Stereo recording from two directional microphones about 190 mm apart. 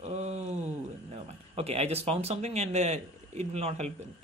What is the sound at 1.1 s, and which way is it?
Speech, 35° right (ahead or behind).